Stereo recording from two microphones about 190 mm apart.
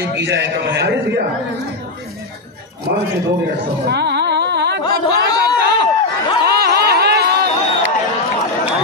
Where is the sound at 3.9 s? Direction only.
65° right (ahead or behind).